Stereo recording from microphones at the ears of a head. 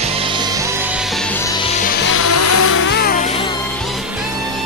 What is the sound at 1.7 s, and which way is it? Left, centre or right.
Music, left.